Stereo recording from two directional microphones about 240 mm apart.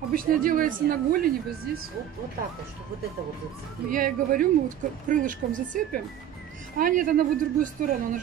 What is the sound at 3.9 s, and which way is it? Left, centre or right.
Speech, right.